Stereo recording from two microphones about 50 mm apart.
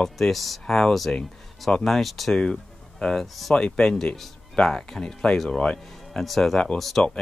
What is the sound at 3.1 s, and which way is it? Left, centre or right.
Speech, centre.